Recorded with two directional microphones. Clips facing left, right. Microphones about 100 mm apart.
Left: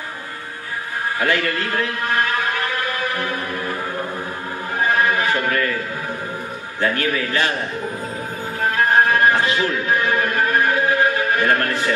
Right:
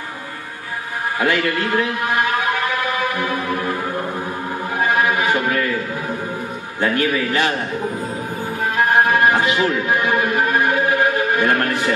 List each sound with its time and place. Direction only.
1.2 s a man's voice: 15° right (ahead or behind)
4.9 s music: 15° right (ahead or behind)
6.8 s a man's voice: 20° right (ahead or behind)
8.7 s music: 15° right (ahead or behind)